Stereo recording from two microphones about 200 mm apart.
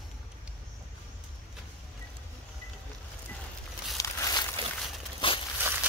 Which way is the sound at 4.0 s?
15° left (ahead or behind).